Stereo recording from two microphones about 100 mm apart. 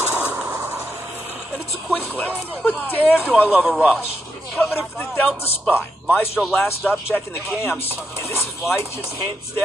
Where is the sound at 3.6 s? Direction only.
15° right (ahead or behind).